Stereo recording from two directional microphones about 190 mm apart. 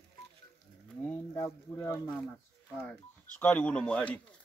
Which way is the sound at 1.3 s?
15° left (ahead or behind).